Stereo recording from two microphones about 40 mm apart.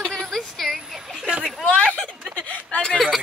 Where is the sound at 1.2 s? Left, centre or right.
Right.